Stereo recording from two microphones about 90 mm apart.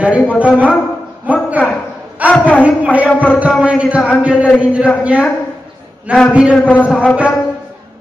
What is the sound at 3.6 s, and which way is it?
Speech, 10° right (ahead or behind).